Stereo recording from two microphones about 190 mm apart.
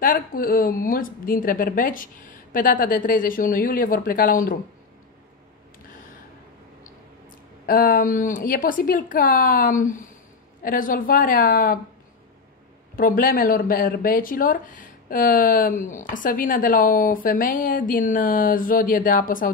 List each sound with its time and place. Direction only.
0.0 s speech: 50° left (ahead or behind)
7.6 s speech: 50° left (ahead or behind)
12.9 s speech: 50° left (ahead or behind)